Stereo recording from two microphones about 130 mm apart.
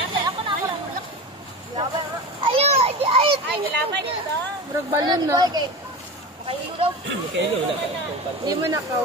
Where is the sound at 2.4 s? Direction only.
50° right (ahead or behind).